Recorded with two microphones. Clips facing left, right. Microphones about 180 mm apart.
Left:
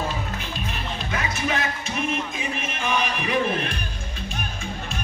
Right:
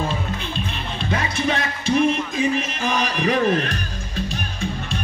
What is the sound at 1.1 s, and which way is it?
Music, 30° right (ahead or behind).